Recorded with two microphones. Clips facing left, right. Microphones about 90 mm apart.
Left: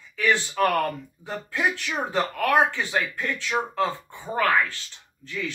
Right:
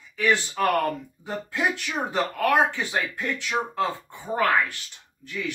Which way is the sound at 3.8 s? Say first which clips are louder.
Left 1 dB; 20° right (ahead or behind).